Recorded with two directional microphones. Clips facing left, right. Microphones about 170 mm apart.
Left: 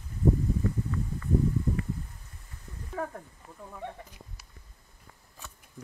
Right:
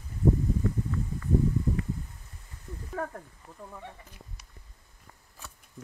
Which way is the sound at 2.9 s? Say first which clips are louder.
Even; centre (ahead or behind).